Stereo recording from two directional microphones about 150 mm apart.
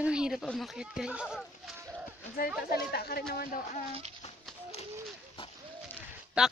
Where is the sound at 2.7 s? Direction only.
90° left.